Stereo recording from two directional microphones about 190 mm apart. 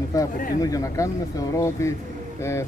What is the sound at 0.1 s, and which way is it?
Speech, 15° left (ahead or behind).